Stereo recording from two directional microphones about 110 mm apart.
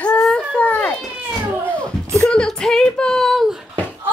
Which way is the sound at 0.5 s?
15° left (ahead or behind).